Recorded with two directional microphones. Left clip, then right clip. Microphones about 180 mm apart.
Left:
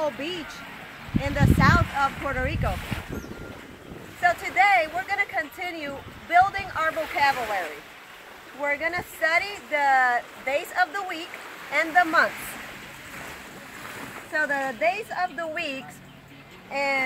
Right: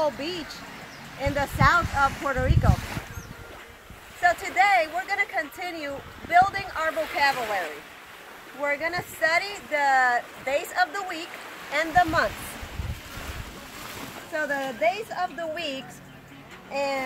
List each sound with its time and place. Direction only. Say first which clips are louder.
0.0 s speech: right 1 dB; 70° left (ahead or behind); by 2.7 s 55° left (ahead or behind)
4.2 s speech: even; centre (ahead or behind)
8.6 s speech: left 1 dB; 5° right (ahead or behind)
14.3 s speech: left 3 dB; 5° right (ahead or behind)